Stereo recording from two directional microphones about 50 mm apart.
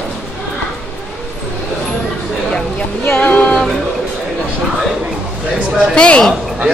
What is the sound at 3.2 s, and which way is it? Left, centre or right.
Music, left.